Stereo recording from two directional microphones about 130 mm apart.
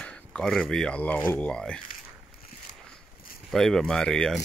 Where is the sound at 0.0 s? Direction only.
5° left (ahead or behind).